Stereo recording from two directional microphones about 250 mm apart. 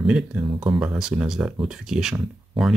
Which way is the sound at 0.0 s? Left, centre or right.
Centre.